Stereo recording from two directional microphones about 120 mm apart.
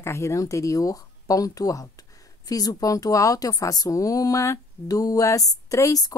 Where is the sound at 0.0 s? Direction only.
25° left (ahead or behind).